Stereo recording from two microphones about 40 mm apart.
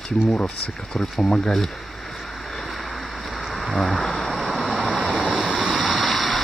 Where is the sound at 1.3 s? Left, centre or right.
Centre.